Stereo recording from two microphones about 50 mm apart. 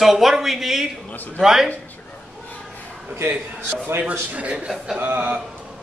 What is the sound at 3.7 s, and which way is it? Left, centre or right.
Speech, right.